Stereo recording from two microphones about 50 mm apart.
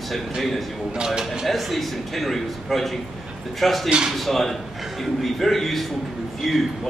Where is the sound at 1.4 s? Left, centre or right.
Centre.